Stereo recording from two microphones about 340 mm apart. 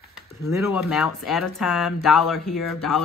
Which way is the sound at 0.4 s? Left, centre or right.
Centre.